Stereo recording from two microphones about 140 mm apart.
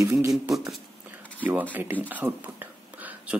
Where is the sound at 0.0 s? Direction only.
20° right (ahead or behind).